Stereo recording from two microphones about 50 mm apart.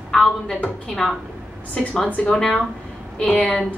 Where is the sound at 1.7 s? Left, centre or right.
Left.